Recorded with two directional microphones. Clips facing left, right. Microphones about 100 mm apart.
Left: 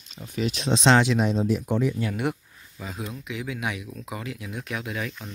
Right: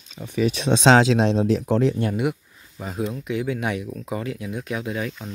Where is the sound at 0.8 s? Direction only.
90° right.